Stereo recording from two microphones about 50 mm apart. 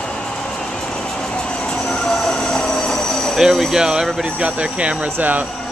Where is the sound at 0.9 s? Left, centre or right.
Centre.